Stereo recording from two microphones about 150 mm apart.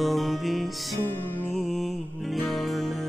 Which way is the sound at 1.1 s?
15° left (ahead or behind).